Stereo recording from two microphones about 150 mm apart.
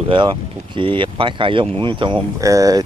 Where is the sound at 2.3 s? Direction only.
20° right (ahead or behind).